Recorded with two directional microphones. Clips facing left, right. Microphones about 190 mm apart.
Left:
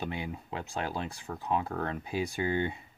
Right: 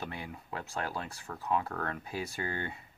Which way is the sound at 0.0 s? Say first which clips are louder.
Left 5 dB; 20° left (ahead or behind).